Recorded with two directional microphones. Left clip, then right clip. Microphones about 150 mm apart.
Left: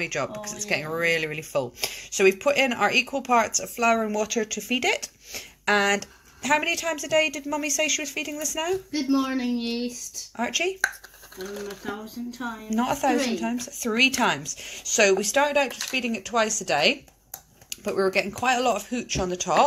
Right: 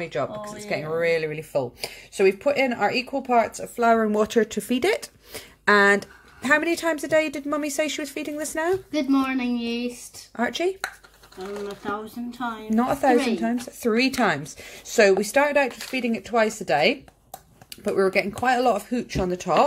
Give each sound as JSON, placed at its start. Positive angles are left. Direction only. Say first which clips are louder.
{"t": 0.0, "sound": "speech", "louder": "right 1 dB", "side_deg": 0}
{"t": 3.8, "sound": "speech", "louder": "right 3 dB", "side_deg": -35}
{"t": 4.1, "sound": "speech", "louder": "right 5 dB", "side_deg": -65}
{"t": 8.9, "sound": "a woman's voice", "louder": "right 2 dB", "side_deg": 10}
{"t": 10.3, "sound": "speech", "louder": "right 2 dB", "side_deg": -40}
{"t": 12.7, "sound": "speech", "louder": "right 3 dB", "side_deg": -35}